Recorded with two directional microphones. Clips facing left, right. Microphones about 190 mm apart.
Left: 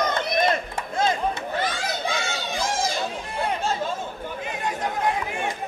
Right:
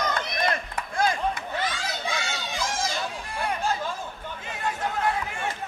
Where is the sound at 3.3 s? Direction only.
25° left (ahead or behind).